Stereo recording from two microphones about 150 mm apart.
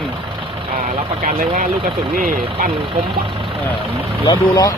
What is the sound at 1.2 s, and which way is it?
Speech, 55° right (ahead or behind).